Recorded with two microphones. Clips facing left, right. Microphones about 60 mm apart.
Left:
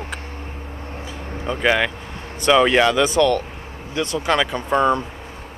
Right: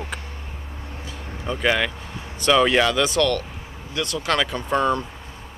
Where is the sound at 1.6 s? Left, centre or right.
Centre.